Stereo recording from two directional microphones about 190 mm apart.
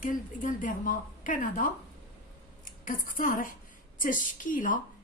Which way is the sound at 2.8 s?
45° left (ahead or behind).